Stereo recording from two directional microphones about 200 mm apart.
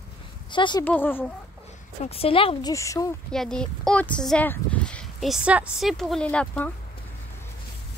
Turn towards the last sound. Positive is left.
turn(degrees=5)  # may be behind; listen again after turning